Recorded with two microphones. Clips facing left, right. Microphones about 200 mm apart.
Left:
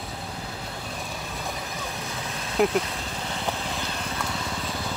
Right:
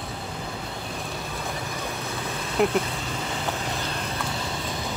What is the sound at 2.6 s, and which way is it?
Speech, centre (ahead or behind).